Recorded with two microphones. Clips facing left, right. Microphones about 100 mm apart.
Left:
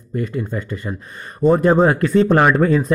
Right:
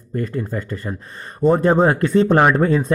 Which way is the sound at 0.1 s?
40° right (ahead or behind).